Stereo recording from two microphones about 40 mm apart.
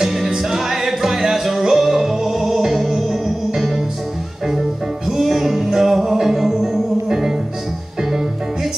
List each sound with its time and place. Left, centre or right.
0.0 s music: centre
5.0 s music: centre